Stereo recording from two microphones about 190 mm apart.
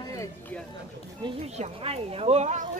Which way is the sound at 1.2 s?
30° right (ahead or behind).